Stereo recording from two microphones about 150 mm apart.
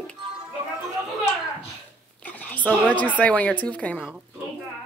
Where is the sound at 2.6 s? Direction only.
10° left (ahead or behind).